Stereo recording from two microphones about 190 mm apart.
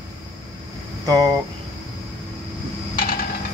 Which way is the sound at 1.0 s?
20° right (ahead or behind).